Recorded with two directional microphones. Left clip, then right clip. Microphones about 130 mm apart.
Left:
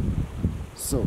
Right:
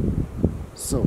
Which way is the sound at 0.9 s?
15° left (ahead or behind).